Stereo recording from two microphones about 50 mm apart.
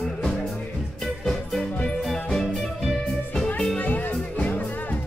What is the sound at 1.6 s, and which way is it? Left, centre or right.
Music, centre.